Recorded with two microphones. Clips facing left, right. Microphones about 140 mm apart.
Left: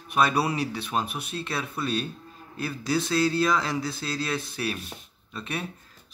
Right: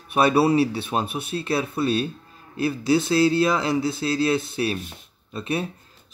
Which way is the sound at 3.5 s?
25° right (ahead or behind).